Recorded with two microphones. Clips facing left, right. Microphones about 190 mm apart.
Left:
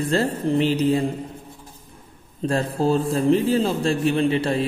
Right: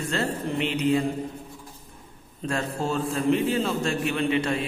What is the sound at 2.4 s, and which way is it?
Speech, 35° left (ahead or behind).